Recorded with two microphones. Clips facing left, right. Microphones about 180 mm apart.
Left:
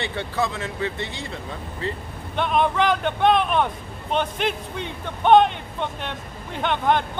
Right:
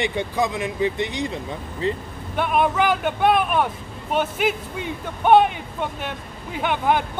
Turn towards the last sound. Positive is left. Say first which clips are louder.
# even
turn(degrees=-10)  # may be behind; listen again after turning